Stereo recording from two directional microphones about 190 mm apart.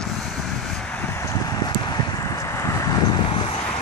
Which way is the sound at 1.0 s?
10° left (ahead or behind).